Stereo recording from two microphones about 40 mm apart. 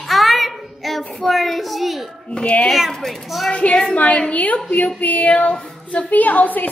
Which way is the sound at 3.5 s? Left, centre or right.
Left.